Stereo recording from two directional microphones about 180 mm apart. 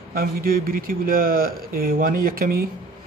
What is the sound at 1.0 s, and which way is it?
Speech, 55° right (ahead or behind).